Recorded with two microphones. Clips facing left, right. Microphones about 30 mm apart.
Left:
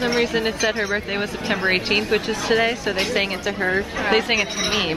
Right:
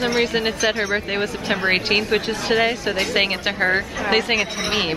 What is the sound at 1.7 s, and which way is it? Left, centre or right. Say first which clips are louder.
Speech: right 1 dB; centre.